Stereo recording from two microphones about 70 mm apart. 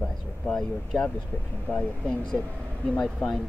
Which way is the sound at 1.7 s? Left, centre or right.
Left.